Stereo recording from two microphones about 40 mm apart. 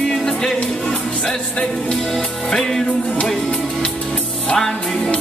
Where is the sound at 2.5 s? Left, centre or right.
Centre.